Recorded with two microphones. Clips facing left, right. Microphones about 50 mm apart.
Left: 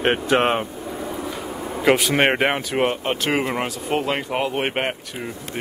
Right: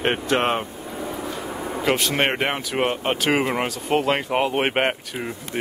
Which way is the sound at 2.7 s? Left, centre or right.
Centre.